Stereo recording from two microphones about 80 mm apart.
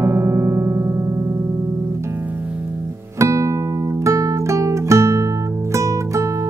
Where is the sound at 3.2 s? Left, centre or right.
Right.